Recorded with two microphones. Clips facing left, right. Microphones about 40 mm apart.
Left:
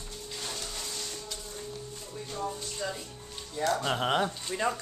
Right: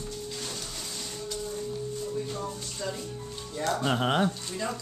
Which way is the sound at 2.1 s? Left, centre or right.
Centre.